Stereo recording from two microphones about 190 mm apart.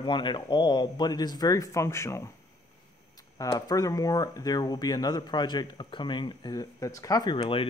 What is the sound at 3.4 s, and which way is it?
Speech, 20° left (ahead or behind).